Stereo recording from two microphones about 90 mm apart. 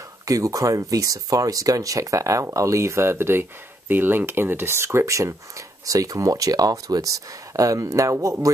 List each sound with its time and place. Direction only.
0.2 s speech: 40° right (ahead or behind)